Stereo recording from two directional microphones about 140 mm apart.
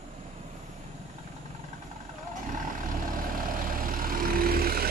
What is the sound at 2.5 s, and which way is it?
Vehicle, 70° right (ahead or behind).